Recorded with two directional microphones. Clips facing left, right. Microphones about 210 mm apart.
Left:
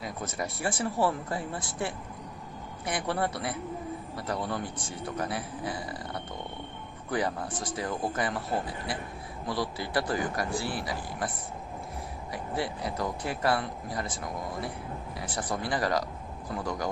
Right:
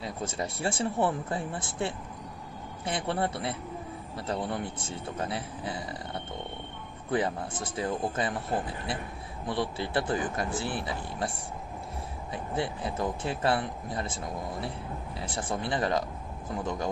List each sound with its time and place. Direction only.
0.0 s speech: 30° right (ahead or behind)
9.5 s speech: 25° right (ahead or behind)